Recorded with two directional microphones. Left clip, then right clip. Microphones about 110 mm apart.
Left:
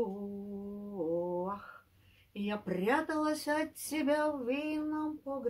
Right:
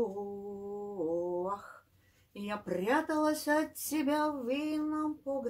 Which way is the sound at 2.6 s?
25° left (ahead or behind).